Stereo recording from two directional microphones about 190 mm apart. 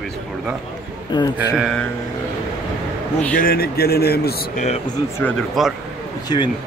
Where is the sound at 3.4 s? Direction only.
50° left (ahead or behind).